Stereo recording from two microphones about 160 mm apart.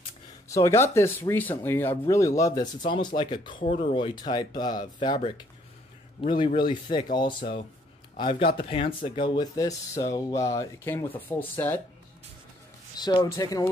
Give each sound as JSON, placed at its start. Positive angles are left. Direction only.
{"t": 0.5, "sound": "speech", "side_deg": 20}
{"t": 2.8, "sound": "speech", "side_deg": 35}
{"t": 6.4, "sound": "speech", "side_deg": 30}
{"t": 12.9, "sound": "speech", "side_deg": 25}